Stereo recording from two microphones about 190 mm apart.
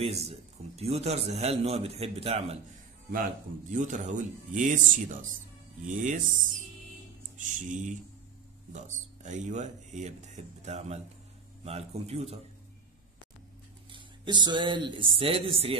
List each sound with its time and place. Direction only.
0.0 s a man's voice: 35° right (ahead or behind)
3.7 s a man's voice: 40° right (ahead or behind)
13.9 s speech: 25° right (ahead or behind)